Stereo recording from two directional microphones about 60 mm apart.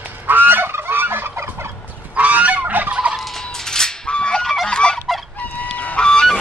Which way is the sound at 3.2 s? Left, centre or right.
Centre.